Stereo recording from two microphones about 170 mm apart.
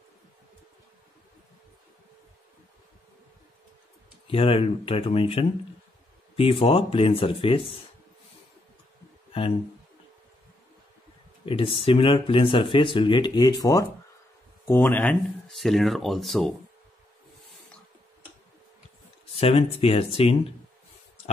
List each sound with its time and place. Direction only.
4.3 s speech: 35° left (ahead or behind)
11.4 s speech: 30° left (ahead or behind); by 16.5 s centre (ahead or behind)
19.3 s speech: 35° left (ahead or behind)